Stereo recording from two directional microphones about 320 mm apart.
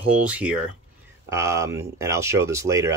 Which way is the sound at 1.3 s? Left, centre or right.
Centre.